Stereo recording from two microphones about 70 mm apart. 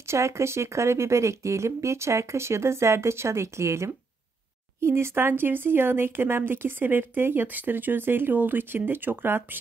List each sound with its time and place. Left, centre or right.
0.1 s speech: right